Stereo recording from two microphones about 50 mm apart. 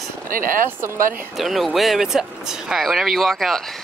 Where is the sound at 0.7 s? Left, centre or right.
Right.